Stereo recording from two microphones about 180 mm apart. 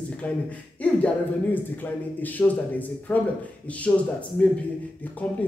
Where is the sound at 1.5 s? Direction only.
10° left (ahead or behind).